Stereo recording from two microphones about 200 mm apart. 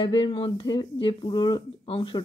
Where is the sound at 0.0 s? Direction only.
25° left (ahead or behind).